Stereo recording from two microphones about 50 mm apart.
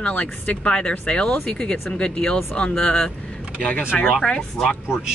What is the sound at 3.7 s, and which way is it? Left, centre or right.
Speech, left.